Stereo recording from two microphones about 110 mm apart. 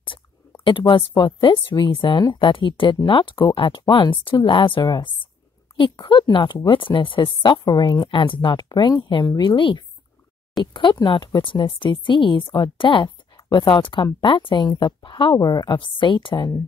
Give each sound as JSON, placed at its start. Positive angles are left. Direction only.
{"t": 0.7, "sound": "speech", "side_deg": 50}